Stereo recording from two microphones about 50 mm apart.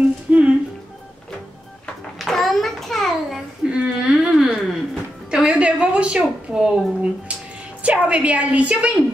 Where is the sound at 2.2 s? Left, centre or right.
Centre.